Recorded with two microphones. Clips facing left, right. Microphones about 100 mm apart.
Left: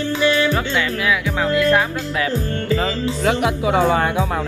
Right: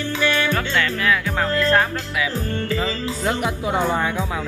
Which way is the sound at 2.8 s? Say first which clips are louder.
Left 4 dB; 90° left.